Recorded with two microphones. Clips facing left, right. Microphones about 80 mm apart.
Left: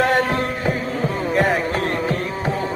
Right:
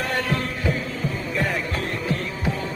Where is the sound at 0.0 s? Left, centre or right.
Left.